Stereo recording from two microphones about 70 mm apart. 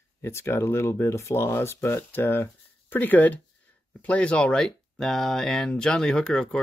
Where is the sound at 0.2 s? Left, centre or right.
Left.